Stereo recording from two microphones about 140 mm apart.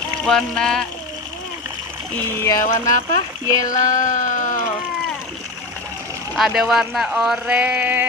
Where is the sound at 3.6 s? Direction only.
65° left (ahead or behind).